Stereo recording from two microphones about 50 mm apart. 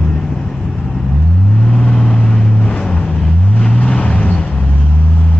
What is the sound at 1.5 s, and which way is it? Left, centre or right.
Vehicle, centre.